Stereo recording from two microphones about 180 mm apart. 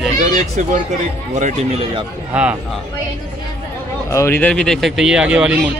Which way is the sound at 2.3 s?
5° right (ahead or behind).